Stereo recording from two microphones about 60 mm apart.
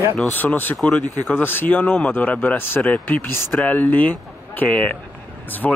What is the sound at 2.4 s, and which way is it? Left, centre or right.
Speech, left.